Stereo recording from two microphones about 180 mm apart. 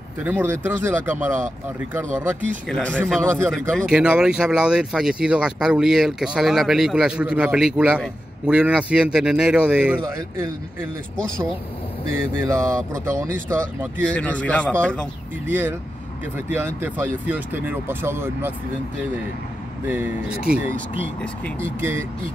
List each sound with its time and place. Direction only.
0.2 s speech: 10° right (ahead or behind)
2.7 s a man's voice: 5° left (ahead or behind); by 10.9 s 10° right (ahead or behind)
12.1 s speech: 15° right (ahead or behind)
14.1 s a man's voice: 5° left (ahead or behind)
15.4 s speech: 10° right (ahead or behind)
19.9 s speech: 10° right (ahead or behind)